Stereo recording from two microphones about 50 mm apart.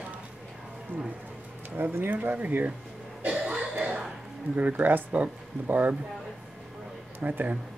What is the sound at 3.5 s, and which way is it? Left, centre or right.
Cough, right.